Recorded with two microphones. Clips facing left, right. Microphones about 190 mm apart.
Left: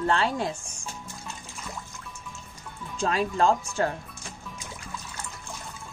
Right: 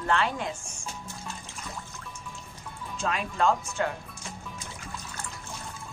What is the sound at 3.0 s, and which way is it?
Speech, 35° left (ahead or behind).